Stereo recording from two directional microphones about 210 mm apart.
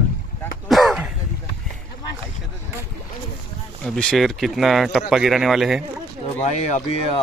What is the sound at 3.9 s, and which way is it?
Speech, centre (ahead or behind).